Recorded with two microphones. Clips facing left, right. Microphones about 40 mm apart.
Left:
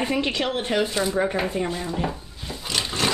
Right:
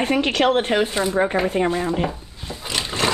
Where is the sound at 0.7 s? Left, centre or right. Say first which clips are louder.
Right 3 dB; right.